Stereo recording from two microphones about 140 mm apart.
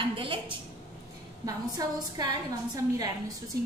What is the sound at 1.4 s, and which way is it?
A woman's voice, 30° right (ahead or behind).